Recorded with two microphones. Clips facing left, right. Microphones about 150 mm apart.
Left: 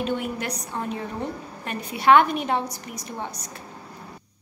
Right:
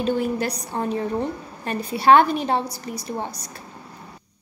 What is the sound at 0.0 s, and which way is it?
A woman's voice, 35° right (ahead or behind).